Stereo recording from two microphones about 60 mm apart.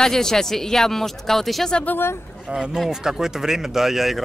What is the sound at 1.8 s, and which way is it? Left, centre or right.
Speech, left.